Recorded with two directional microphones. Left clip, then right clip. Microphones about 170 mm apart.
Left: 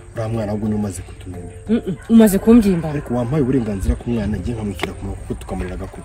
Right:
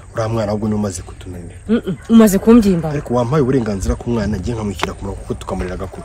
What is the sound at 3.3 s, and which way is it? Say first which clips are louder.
Speech: right 3 dB; 50° right (ahead or behind).